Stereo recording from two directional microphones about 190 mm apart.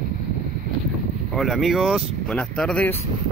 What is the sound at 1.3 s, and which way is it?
Speech, centre (ahead or behind).